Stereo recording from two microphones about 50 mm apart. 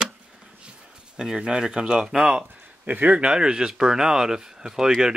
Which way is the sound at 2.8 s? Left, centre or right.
Right.